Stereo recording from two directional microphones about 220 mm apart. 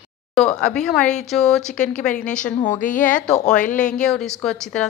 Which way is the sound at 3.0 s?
5° left (ahead or behind).